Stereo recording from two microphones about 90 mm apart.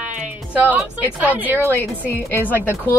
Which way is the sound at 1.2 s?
20° right (ahead or behind).